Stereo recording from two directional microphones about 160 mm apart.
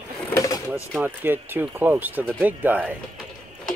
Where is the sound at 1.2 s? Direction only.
15° right (ahead or behind).